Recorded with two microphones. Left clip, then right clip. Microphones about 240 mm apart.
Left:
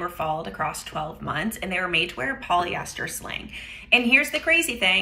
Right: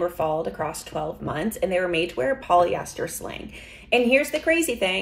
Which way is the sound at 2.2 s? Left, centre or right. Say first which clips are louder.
Right 4 dB; left.